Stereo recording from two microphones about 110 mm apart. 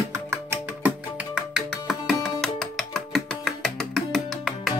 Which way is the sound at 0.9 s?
10° right (ahead or behind).